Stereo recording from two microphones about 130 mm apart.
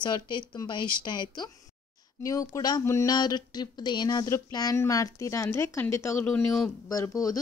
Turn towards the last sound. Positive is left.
turn(degrees=25)  # may be behind; listen again after turning